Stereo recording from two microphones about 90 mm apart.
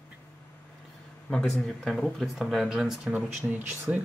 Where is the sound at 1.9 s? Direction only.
Centre (ahead or behind).